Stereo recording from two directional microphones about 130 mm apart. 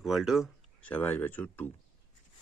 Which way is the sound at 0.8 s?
15° left (ahead or behind).